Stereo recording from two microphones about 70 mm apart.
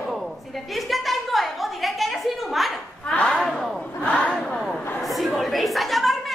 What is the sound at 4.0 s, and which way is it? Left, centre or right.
Crowd, centre.